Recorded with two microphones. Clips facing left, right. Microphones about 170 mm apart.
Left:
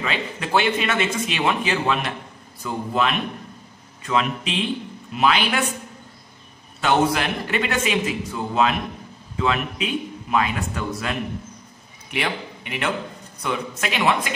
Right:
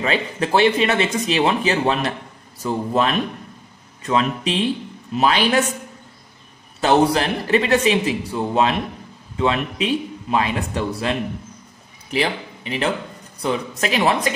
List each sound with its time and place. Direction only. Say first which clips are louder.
0.0 s speech: right 6 dB; 35° right (ahead or behind)
6.8 s speech: right 4 dB; 35° right (ahead or behind)